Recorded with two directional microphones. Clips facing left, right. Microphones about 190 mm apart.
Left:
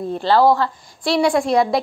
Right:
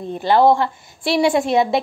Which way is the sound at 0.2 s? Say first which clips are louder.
Right 1 dB; 20° right (ahead or behind).